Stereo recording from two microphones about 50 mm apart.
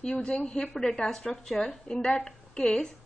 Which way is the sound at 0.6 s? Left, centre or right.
Centre.